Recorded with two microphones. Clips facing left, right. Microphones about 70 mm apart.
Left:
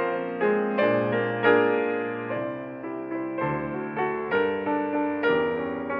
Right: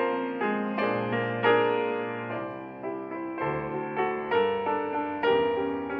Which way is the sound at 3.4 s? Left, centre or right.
Left.